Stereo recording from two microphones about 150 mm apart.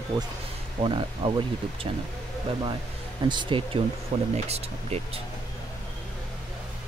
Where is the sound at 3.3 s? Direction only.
30° right (ahead or behind).